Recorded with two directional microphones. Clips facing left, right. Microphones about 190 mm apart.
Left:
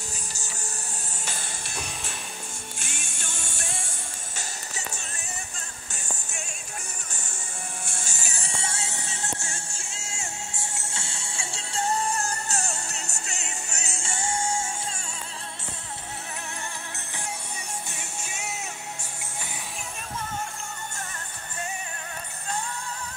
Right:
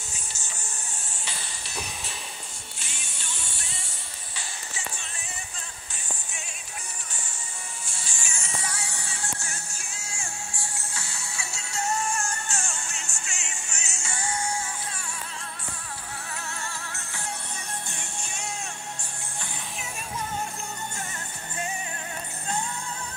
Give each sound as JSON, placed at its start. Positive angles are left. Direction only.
{"t": 1.2, "sound": "music", "side_deg": 45}
{"t": 2.8, "sound": "music", "side_deg": 50}
{"t": 7.8, "sound": "music", "side_deg": 50}
{"t": 17.6, "sound": "music", "side_deg": 5}